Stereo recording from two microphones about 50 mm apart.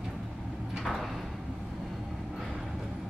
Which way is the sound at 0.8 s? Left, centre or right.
Centre.